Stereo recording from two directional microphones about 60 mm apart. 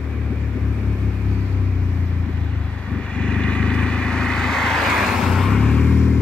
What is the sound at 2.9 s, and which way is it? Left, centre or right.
Vehicle, centre.